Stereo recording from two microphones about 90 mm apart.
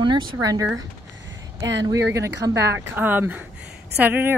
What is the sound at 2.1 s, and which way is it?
Speech, 30° right (ahead or behind).